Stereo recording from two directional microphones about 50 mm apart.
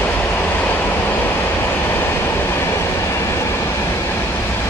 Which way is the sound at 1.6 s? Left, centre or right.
Left.